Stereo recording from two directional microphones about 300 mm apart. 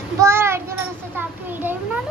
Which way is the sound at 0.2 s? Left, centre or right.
Centre.